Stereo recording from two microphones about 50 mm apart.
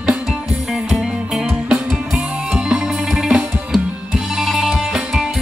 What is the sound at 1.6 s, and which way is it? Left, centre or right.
Music, centre.